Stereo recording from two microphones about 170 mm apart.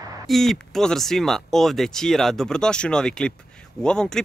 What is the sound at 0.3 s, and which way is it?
Speech, centre (ahead or behind).